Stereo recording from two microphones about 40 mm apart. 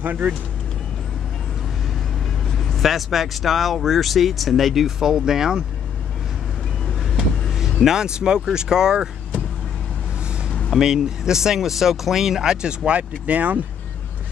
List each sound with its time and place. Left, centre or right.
0.0 s speech: right
2.5 s speech: centre
4.8 s speech: centre
7.8 s speech: centre
10.8 s speech: centre
12.6 s speech: right